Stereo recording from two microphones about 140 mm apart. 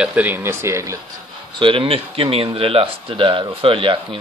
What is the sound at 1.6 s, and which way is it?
Speech, 40° right (ahead or behind).